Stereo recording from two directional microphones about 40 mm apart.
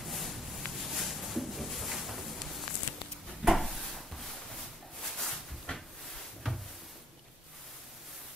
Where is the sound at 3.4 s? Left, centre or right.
Centre.